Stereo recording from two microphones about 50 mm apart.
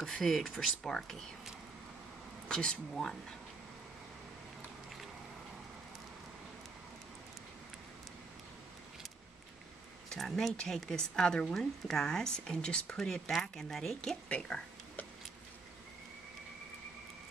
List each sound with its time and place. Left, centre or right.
0.0 s speech: centre
2.4 s speech: centre
10.0 s speech: centre
11.4 s speech: centre